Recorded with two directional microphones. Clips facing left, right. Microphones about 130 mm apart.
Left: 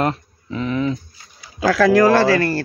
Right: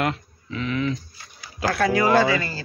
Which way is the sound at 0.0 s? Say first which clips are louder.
Left 4 dB; 35° left (ahead or behind).